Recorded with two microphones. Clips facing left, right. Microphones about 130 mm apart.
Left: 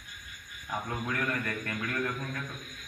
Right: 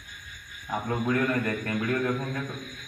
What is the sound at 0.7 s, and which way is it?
A man's voice, 25° right (ahead or behind).